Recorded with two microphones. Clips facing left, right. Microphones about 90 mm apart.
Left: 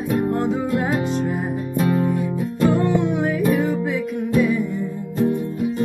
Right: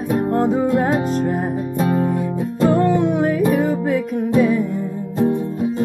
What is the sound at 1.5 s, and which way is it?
Music, 35° right (ahead or behind).